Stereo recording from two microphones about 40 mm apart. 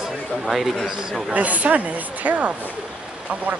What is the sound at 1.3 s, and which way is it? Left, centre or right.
A woman's voice, right.